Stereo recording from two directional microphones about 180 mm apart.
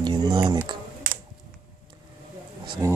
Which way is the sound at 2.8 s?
20° right (ahead or behind).